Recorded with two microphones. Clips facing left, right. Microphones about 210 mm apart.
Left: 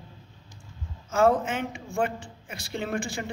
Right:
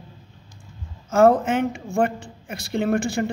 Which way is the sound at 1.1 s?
50° right (ahead or behind).